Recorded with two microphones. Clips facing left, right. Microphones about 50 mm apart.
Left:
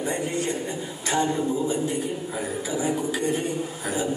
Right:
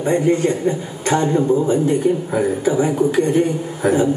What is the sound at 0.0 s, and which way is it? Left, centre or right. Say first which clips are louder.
A man's voice: right 11 dB; right.